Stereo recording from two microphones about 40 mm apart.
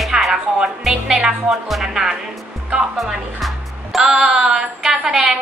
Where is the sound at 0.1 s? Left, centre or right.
Centre.